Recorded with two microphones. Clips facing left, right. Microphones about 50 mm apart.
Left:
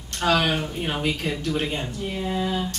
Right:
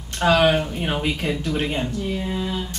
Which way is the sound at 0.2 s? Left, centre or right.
Centre.